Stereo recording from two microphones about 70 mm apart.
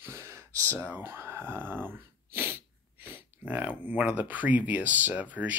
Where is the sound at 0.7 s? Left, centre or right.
Right.